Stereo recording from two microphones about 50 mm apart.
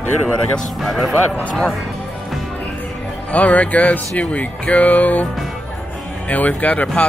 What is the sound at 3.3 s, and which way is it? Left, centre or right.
Speech, left.